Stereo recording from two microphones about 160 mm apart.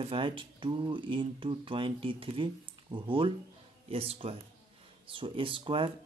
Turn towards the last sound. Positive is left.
turn(degrees=-35)  # may be behind; listen again after turning